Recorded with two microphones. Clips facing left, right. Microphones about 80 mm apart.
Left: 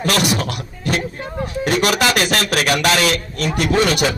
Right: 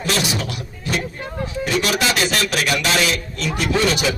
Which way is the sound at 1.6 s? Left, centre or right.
Left.